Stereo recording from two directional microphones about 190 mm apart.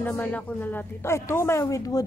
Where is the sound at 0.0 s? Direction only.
10° left (ahead or behind).